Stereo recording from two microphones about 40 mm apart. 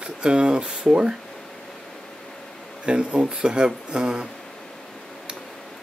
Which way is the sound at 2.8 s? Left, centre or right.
Right.